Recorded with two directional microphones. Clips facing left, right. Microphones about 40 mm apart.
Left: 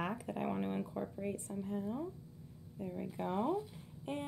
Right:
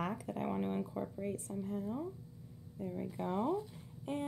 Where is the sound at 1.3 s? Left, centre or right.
Left.